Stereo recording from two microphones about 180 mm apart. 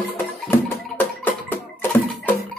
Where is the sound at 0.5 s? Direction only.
10° left (ahead or behind).